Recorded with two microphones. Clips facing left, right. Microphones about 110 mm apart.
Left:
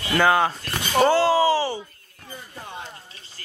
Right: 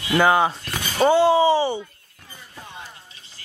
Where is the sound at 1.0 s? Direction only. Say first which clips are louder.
Right 3 dB; 20° right (ahead or behind).